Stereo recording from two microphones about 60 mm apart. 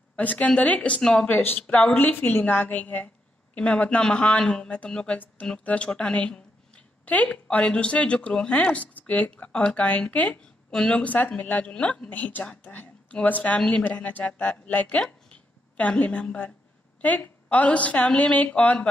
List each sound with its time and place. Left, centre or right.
0.1 s a woman's voice: left
10.7 s speech: centre
11.2 s a woman's voice: left